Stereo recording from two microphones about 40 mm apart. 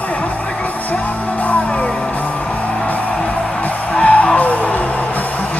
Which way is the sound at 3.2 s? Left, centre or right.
Left.